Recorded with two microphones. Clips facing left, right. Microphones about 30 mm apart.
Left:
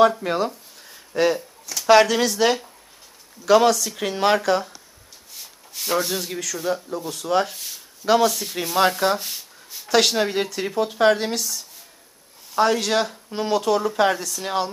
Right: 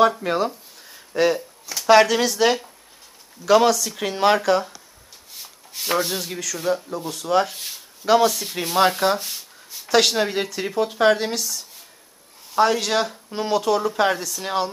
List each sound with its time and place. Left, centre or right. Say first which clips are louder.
0.0 s a sound: left 1 dB; centre
1.7 s speech: even; centre
5.3 s rub: right 1 dB; centre
5.9 s speech: left 1 dB; centre
7.5 s speech: right 2 dB; right
8.0 s speech: right 1 dB; centre